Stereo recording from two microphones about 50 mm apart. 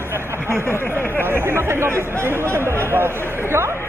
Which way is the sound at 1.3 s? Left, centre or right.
Right.